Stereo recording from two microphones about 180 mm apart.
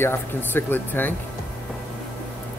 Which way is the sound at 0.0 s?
10° left (ahead or behind).